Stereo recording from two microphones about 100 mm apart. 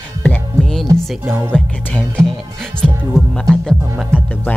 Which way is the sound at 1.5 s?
10° left (ahead or behind).